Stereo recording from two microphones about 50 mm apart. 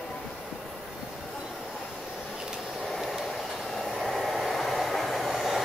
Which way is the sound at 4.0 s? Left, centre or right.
Centre.